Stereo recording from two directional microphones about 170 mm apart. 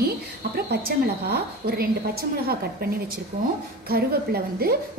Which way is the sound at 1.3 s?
65° right (ahead or behind).